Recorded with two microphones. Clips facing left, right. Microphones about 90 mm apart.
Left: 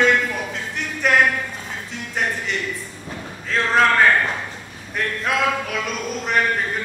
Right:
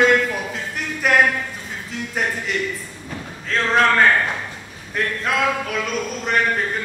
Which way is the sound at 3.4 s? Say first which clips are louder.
Even; centre (ahead or behind).